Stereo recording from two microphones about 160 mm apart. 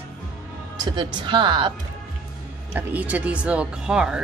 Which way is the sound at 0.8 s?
30° right (ahead or behind).